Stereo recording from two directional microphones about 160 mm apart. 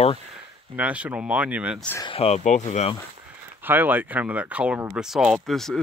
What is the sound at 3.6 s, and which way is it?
Speech, 10° right (ahead or behind).